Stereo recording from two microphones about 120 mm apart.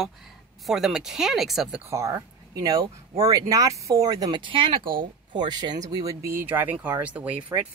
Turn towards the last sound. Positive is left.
turn(degrees=-10)  # may be behind; listen again after turning